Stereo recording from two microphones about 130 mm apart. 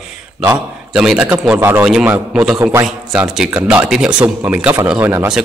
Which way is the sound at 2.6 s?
20° right (ahead or behind).